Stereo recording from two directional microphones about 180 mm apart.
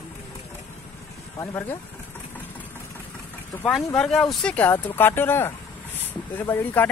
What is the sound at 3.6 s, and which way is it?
Speech, 5° left (ahead or behind).